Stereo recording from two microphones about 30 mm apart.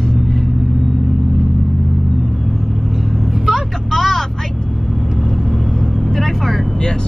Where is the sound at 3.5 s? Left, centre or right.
Centre.